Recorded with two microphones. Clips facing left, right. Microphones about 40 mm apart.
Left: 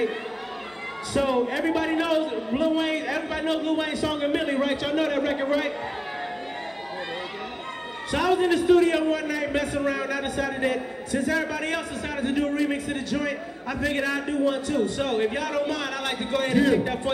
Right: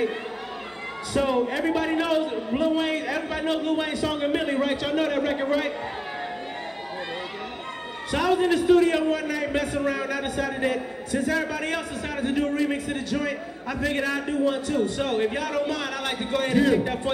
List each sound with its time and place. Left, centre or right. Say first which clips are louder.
1.1 s a man's voice: even; centre
3.4 s a man's voice: even; centre
8.3 s a man's voice: even; centre
12.4 s a man's voice: even; centre
14.1 s a man's voice: even; centre
16.6 s a man's voice: even; centre